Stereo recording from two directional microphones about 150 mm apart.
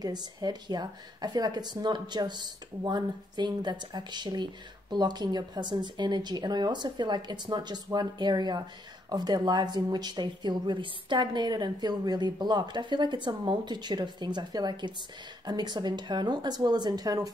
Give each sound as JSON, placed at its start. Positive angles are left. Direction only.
{"t": 0.0, "sound": "speech", "side_deg": -25}